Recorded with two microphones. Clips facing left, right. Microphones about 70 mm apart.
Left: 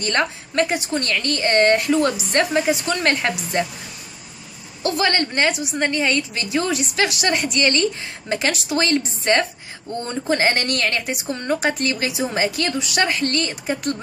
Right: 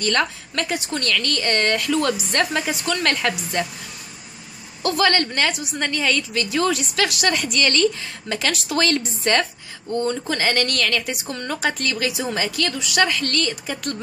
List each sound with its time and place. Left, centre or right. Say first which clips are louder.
0.0 s a woman's voice: even; left
4.8 s a woman's voice: right 1 dB; centre
9.9 s a woman's voice: left 1 dB; left